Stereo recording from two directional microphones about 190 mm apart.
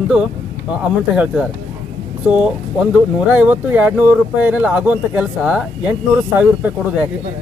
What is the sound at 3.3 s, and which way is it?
Speech, 10° right (ahead or behind).